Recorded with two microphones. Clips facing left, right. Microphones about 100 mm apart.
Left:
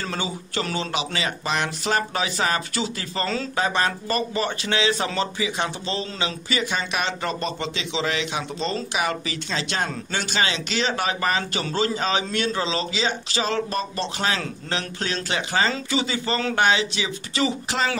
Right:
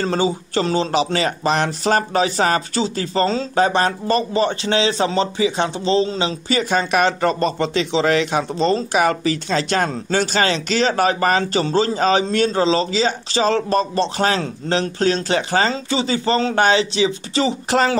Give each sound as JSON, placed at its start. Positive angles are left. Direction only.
{"t": 0.0, "sound": "a man's voice", "side_deg": -35}
{"t": 6.7, "sound": "a man's voice", "side_deg": -45}
{"t": 17.6, "sound": "a man's voice", "side_deg": -45}